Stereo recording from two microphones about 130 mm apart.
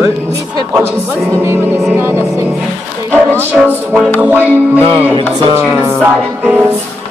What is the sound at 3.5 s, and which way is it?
Music, 10° right (ahead or behind).